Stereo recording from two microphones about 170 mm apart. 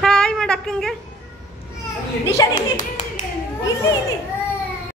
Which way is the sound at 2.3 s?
20° left (ahead or behind).